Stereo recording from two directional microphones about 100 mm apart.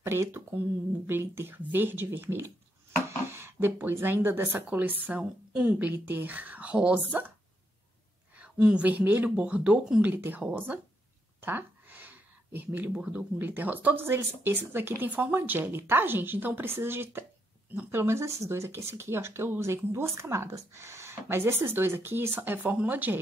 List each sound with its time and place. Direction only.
0.0 s a woman's voice: 25° right (ahead or behind)
8.4 s a woman's voice: 10° right (ahead or behind)
11.4 s a sound: 20° right (ahead or behind)
12.5 s speech: 20° right (ahead or behind)